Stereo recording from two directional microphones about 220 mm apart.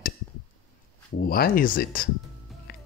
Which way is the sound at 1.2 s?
40° left (ahead or behind).